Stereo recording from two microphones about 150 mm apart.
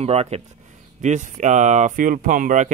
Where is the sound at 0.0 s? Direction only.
45° right (ahead or behind).